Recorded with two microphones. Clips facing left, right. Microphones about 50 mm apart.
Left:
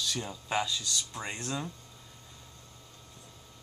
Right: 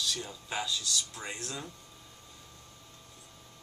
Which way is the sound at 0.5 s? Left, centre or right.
Left.